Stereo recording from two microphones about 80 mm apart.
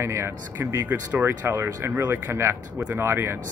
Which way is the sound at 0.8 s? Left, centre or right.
Right.